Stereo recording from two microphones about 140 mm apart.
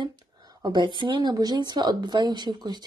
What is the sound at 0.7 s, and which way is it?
Speech, 35° right (ahead or behind).